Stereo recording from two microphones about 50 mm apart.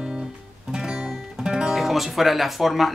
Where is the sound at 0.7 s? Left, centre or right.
Centre.